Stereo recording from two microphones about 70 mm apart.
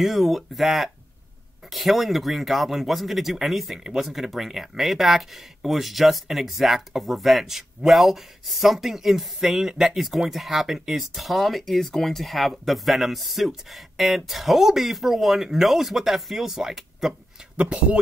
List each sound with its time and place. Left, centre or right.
0.0 s speech: centre
17.6 s speech: centre